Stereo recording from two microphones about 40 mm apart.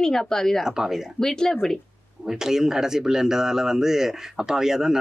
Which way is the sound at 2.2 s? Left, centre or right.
Centre.